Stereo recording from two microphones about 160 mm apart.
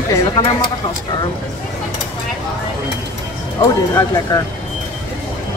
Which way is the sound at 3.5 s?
20° left (ahead or behind).